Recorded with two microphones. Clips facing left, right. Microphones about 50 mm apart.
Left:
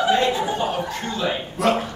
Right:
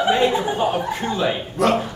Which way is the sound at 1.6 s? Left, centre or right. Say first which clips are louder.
Right 2 dB; centre.